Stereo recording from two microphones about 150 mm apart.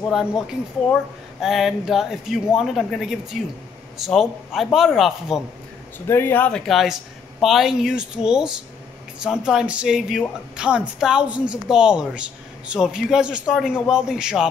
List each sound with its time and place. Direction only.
1.4 s a woman's voice: centre (ahead or behind)
6.0 s a woman's voice: 15° left (ahead or behind); by 14.5 s 5° right (ahead or behind)